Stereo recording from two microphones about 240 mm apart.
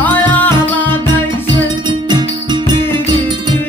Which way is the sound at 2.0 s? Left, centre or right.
Centre.